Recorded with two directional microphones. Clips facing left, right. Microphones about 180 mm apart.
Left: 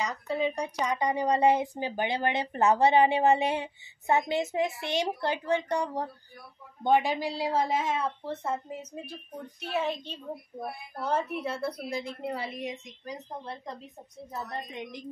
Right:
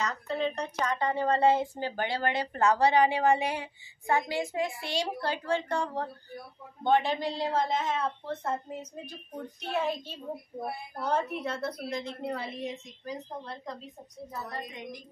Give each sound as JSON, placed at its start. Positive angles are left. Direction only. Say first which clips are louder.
{"t": 0.0, "sound": "a woman's voice", "louder": "left 1 dB", "side_deg": 10}
{"t": 9.6, "sound": "a woman's voice", "louder": "even", "side_deg": 0}